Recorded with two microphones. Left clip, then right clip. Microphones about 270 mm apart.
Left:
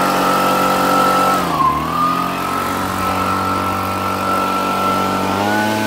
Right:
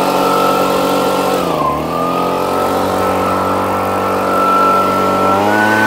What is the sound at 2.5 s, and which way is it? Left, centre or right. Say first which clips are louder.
Vehicle: right 5 dB; centre.